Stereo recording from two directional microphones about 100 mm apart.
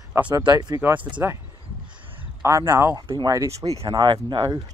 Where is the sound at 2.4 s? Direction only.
25° right (ahead or behind).